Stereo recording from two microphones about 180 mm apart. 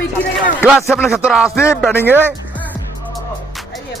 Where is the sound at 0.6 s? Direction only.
5° right (ahead or behind).